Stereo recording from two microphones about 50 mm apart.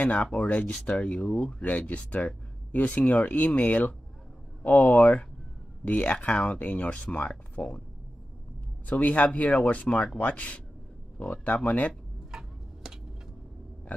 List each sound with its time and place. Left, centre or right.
0.0 s speech: left
8.8 s speech: left
12.3 s tick-tock: centre